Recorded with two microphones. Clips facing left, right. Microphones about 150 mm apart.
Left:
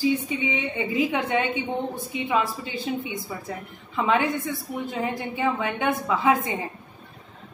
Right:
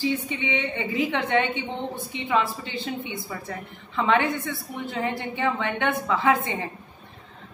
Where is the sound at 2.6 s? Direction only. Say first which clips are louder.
Left 2 dB; 25° right (ahead or behind).